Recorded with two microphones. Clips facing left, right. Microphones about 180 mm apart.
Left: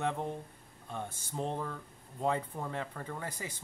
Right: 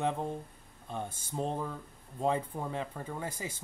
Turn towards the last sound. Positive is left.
turn(degrees=-10)  # may be behind; listen again after turning